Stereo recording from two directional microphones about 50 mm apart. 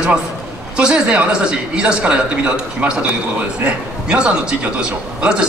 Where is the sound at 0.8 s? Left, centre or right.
Right.